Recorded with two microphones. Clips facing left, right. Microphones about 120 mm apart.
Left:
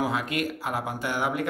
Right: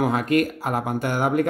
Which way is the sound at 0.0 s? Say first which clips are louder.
Right 7 dB; 45° right (ahead or behind).